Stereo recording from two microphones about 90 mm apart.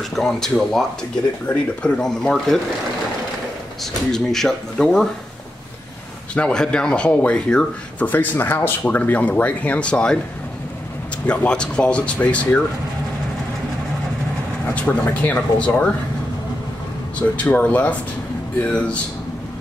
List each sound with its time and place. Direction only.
0.1 s speech: 5° left (ahead or behind)
3.8 s speech: 5° left (ahead or behind)
6.3 s speech: 10° left (ahead or behind)
11.2 s speech: 10° left (ahead or behind)
14.7 s speech: 15° left (ahead or behind)
17.4 s speech: 15° left (ahead or behind)